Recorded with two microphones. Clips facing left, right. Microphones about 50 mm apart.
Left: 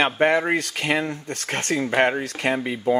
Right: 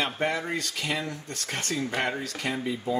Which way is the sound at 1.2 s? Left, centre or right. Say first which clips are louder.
Left 7 dB; left.